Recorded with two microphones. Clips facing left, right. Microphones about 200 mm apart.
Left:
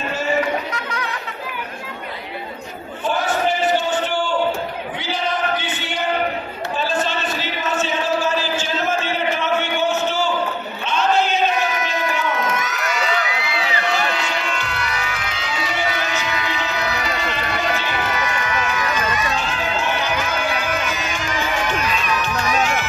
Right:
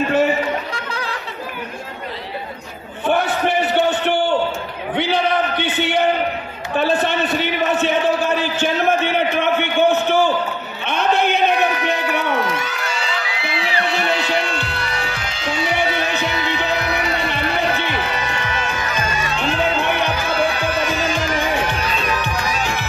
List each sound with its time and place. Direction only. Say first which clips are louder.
3.1 s a sound: right 2 dB; 60° right (ahead or behind)
12.3 s crowd: right 2 dB; 30° right (ahead or behind)
18.1 s music: left 1 dB; 30° right (ahead or behind)
19.3 s music: right 4 dB; 60° right (ahead or behind)
22.5 s music: left 3 dB; 35° right (ahead or behind)